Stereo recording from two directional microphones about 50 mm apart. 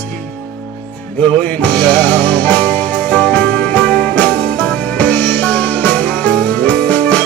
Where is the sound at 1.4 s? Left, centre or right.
Left.